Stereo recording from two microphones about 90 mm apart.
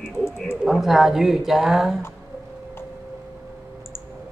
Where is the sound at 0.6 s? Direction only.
Centre (ahead or behind).